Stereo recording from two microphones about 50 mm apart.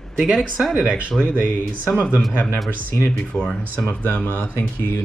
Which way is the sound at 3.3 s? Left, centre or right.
Left.